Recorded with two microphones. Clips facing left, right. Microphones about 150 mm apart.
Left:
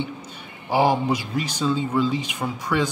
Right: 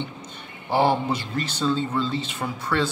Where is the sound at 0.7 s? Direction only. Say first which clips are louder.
Left 1 dB; 10° left (ahead or behind).